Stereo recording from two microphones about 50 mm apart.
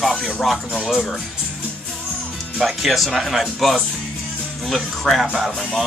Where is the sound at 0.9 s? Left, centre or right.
Centre.